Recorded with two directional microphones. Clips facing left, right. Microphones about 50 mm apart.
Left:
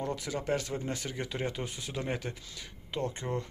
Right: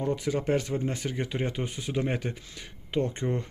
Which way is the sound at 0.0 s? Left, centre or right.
Right.